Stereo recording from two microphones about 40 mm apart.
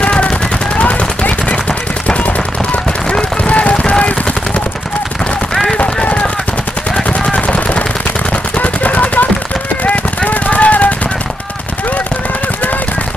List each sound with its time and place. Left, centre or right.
0.0 s gunshot: left
0.7 s machine gun: left
2.0 s a sound: left
5.5 s run: centre
7.3 s machine gun: left
8.5 s gunshot: left